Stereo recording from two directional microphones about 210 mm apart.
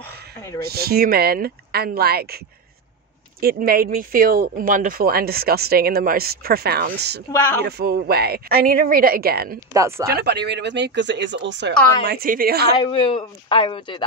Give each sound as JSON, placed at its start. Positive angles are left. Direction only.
{"t": 0.6, "sound": "speech", "side_deg": -50}
{"t": 9.8, "sound": "speech", "side_deg": -15}
{"t": 10.0, "sound": "speech", "side_deg": -50}
{"t": 12.1, "sound": "speech", "side_deg": -45}
{"t": 12.7, "sound": "speech", "side_deg": 20}